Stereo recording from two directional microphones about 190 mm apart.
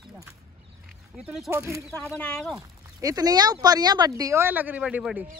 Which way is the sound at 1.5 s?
15° right (ahead or behind).